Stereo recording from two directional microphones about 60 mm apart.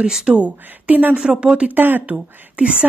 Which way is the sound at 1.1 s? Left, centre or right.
Centre.